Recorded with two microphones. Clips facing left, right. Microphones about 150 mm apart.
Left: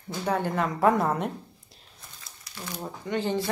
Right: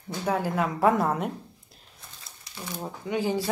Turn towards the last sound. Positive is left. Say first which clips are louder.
# right 1 dB
turn(degrees=-10)  # may be behind; listen again after turning